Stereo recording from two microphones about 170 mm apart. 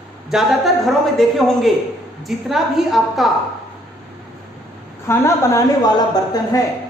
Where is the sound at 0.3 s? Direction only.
Centre (ahead or behind).